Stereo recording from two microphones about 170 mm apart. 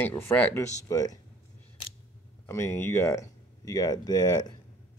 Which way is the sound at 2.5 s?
15° left (ahead or behind).